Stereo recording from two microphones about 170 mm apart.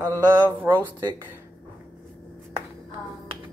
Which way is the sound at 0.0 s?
15° right (ahead or behind).